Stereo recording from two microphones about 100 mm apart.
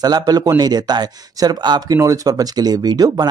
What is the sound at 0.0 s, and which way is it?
Speech, 40° right (ahead or behind).